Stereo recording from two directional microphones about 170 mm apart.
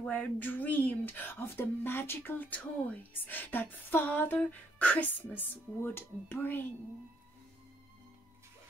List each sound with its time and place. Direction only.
0.0 s speech: 10° left (ahead or behind)